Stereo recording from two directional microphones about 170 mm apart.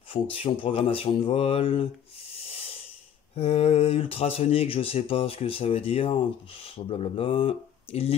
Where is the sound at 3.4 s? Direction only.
35° left (ahead or behind).